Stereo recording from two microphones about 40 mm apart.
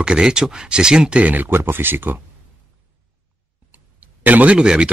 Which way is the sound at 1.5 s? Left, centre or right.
Right.